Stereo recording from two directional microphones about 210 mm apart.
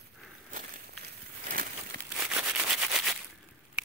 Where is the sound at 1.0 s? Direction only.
40° right (ahead or behind).